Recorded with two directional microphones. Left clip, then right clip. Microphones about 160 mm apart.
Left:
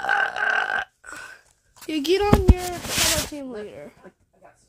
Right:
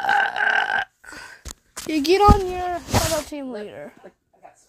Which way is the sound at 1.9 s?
10° right (ahead or behind).